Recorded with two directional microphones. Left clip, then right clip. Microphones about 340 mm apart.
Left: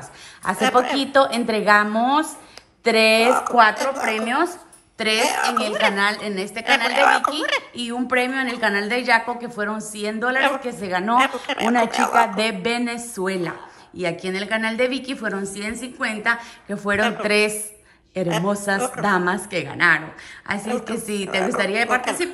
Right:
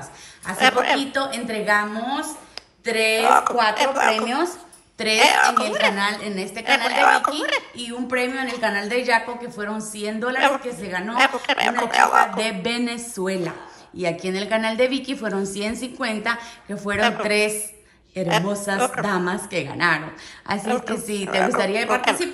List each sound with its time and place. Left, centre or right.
0.5 s a woman's voice: centre